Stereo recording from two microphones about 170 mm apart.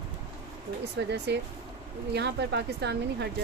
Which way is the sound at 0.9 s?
90° right.